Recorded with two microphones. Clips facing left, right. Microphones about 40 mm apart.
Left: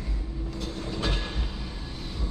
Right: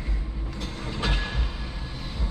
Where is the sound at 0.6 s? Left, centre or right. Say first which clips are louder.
Right 1 dB; right.